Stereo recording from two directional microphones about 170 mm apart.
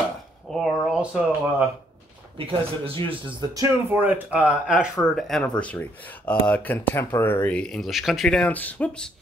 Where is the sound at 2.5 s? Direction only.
30° right (ahead or behind).